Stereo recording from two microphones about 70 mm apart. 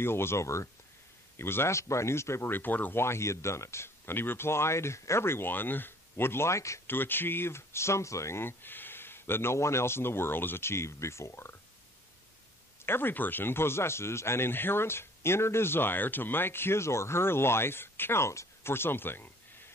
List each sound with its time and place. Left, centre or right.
0.0 s speech: left
6.9 s speech: left
12.8 s speech: left